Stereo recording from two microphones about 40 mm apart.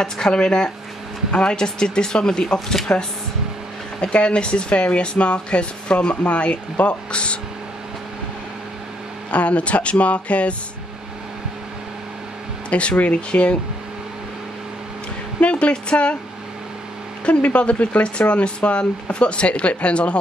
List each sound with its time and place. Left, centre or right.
0.0 s speech: centre
4.0 s speech: left
9.3 s speech: left
12.6 s speech: left
15.4 s speech: left
17.2 s speech: left